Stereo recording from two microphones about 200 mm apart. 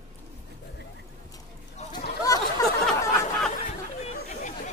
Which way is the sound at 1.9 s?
20° left (ahead or behind).